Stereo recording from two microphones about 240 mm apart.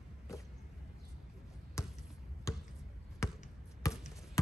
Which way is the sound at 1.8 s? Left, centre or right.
Centre.